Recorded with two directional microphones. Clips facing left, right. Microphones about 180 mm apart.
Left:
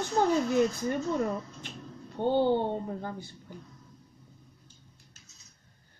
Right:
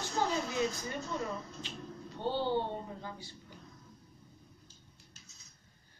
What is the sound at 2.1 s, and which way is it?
Speech, 50° left (ahead or behind).